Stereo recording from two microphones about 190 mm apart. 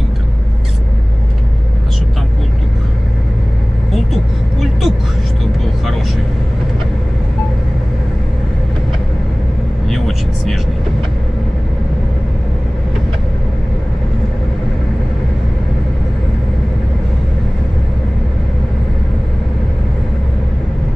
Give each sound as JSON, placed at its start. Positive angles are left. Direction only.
{"t": 3.9, "sound": "vehicle", "side_deg": 0}
{"t": 9.8, "sound": "vehicle", "side_deg": 0}